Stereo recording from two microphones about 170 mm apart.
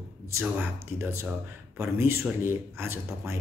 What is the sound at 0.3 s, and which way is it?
Speech, 15° right (ahead or behind).